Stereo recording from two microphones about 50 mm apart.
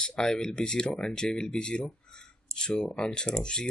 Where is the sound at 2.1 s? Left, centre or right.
Centre.